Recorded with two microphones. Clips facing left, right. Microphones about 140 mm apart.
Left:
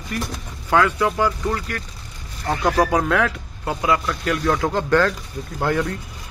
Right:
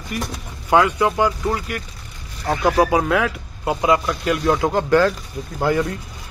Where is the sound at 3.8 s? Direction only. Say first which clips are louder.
Right 3 dB; 20° right (ahead or behind).